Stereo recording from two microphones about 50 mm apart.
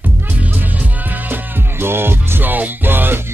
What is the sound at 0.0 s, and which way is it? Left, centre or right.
Music, right.